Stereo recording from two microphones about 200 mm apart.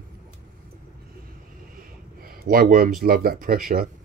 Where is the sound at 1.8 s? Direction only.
45° right (ahead or behind).